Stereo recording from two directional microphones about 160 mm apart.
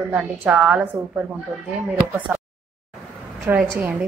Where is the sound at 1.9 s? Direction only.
5° right (ahead or behind).